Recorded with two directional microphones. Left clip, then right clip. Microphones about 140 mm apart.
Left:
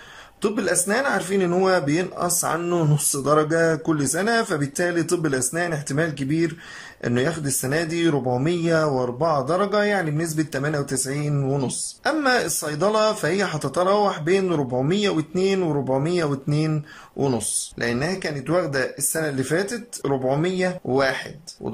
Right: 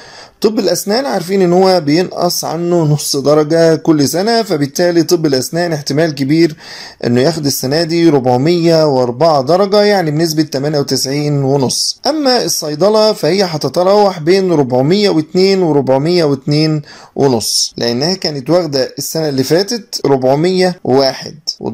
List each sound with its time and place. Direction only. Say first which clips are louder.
0.4 s a man's voice: right 10 dB; 30° right (ahead or behind)